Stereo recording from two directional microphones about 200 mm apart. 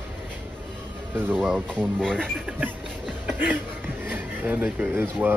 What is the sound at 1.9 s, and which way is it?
Speech, 5° left (ahead or behind).